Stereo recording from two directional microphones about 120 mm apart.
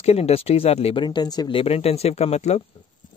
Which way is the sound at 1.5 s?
55° left (ahead or behind).